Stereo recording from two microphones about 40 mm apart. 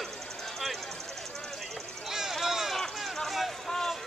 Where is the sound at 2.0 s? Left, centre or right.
Centre.